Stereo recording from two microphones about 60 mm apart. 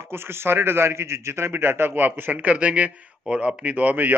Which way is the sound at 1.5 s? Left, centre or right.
Right.